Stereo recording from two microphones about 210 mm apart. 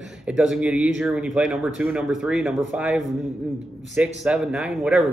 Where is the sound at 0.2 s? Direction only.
5° right (ahead or behind).